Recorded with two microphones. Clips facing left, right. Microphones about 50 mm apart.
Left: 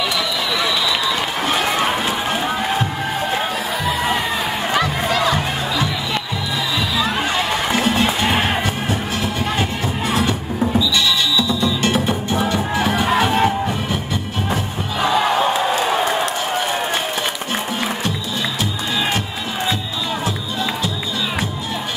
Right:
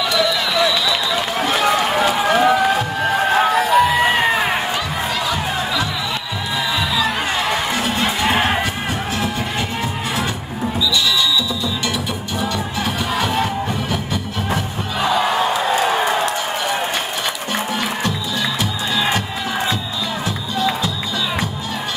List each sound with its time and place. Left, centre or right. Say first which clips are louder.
3.3 s crowd: right 8 dB; right
4.7 s crowd: left 3 dB; left
8.3 s music: right 1 dB; right
10.9 s music: even; left